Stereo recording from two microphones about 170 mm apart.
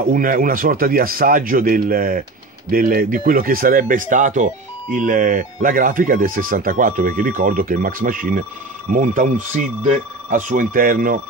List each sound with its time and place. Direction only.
0.0 s speech: 55° right (ahead or behind)